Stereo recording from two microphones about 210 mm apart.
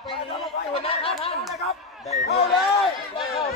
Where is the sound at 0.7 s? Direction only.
25° left (ahead or behind).